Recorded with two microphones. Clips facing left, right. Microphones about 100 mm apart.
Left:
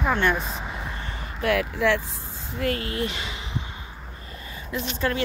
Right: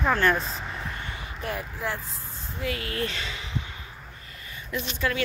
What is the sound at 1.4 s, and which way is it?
Speech, 85° left.